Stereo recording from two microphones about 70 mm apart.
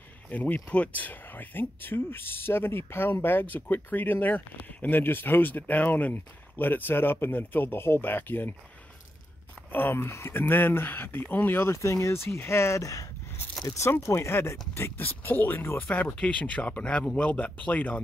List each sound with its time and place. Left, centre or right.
0.3 s speech: left
9.7 s speech: left